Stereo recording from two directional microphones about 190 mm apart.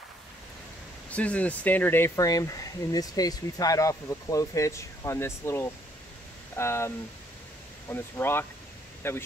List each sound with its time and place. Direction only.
1.1 s speech: 5° left (ahead or behind)
7.9 s speech: 10° left (ahead or behind)